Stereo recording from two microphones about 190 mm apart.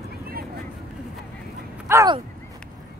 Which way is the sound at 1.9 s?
15° right (ahead or behind).